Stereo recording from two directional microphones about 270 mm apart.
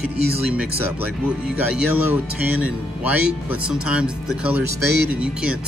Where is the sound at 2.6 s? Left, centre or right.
Centre.